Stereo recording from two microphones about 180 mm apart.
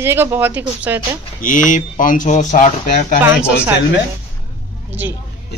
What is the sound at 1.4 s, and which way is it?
Speech, 45° left (ahead or behind).